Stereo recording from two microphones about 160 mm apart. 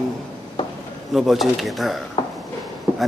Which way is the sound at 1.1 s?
Centre (ahead or behind).